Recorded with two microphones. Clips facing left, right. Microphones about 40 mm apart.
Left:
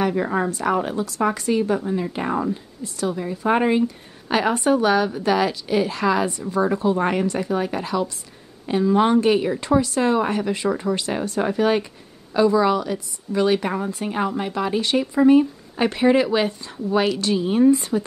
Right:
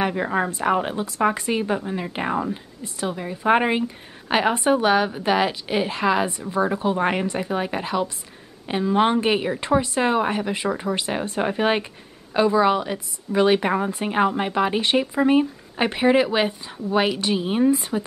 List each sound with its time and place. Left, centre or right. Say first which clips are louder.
0.1 s a woman's voice: left 1 dB; centre